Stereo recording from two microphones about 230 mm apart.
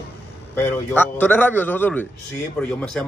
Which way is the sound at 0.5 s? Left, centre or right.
Centre.